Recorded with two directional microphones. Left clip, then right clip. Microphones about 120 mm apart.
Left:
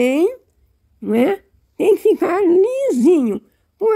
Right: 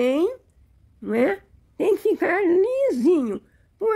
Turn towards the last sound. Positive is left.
turn(degrees=25)  # may be behind; listen again after turning